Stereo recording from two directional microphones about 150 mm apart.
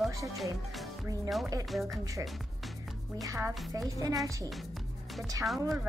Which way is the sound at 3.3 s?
20° right (ahead or behind).